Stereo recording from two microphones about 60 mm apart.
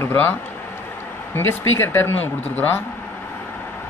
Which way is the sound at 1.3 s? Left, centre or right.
Left.